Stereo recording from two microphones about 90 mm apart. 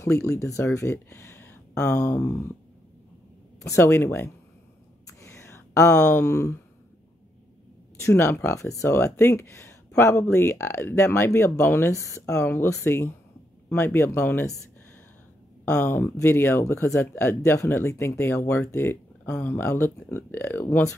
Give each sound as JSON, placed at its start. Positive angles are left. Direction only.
{"t": 0.0, "sound": "speech", "side_deg": 35}
{"t": 3.6, "sound": "speech", "side_deg": 30}
{"t": 5.2, "sound": "a sound", "side_deg": 35}
{"t": 8.0, "sound": "speech", "side_deg": 30}
{"t": 15.7, "sound": "speech", "side_deg": 25}
{"t": 19.2, "sound": "speech", "side_deg": 20}